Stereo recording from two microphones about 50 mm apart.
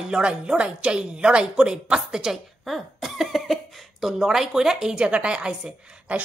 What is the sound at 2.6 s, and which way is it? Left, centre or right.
A woman's voice, centre.